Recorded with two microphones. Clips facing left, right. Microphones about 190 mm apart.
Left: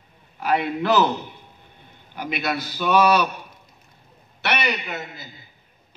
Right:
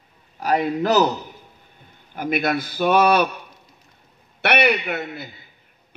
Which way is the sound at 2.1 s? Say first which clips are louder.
Right 5 dB; 50° right (ahead or behind).